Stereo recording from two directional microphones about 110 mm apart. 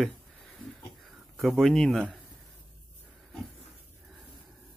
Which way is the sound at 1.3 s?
Centre (ahead or behind).